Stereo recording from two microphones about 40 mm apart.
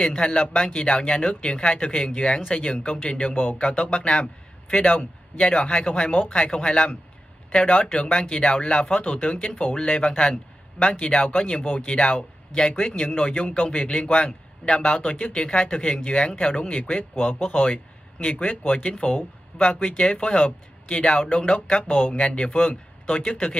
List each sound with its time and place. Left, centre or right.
0.0 s a man's voice: left
12.7 s speech: left
15.0 s speech: left
15.3 s speech: left
17.2 s speech: left
22.2 s speech: left